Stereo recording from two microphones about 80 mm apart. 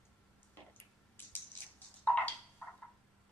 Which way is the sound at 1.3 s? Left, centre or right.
Left.